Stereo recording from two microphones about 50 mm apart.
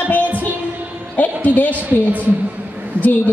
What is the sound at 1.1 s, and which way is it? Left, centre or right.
Music, left.